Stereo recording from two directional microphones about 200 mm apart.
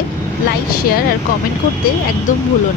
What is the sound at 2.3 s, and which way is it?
Speech, 40° left (ahead or behind).